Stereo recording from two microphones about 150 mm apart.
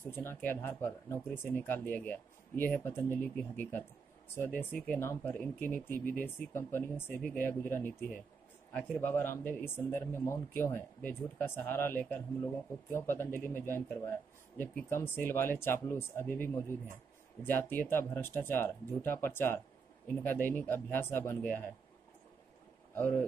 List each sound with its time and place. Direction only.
0.0 s speech: 15° left (ahead or behind)
22.9 s speech: 15° left (ahead or behind)